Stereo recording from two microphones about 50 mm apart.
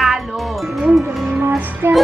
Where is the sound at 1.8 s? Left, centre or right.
Right.